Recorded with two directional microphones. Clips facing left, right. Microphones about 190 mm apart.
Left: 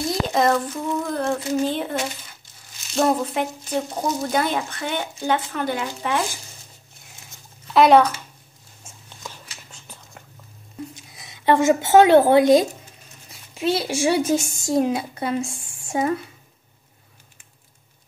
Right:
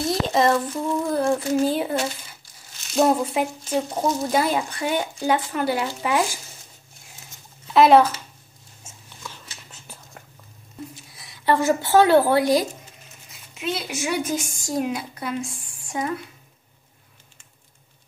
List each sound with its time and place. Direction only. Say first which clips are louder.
0.1 s a sound: even; centre (ahead or behind)
0.8 s speech: right 4 dB; 10° right (ahead or behind)
7.7 s speech: even; centre (ahead or behind)
9.7 s a sound: even; 5° right (ahead or behind)
11.1 s speech: left 3 dB; 20° left (ahead or behind)
13.6 s a woman's voice: left 6 dB; 35° left (ahead or behind)